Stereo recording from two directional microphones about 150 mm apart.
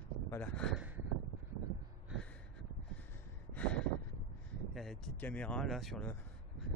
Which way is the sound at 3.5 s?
5° left (ahead or behind).